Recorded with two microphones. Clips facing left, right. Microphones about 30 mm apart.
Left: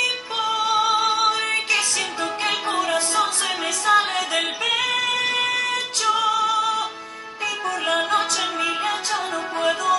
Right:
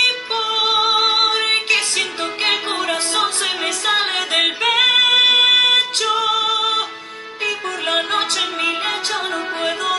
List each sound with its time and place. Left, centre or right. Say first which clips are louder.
0.0 s music: right 5 dB; right